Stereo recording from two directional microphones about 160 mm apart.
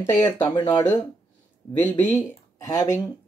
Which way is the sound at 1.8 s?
10° left (ahead or behind).